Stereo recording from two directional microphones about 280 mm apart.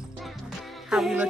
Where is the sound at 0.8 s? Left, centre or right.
Centre.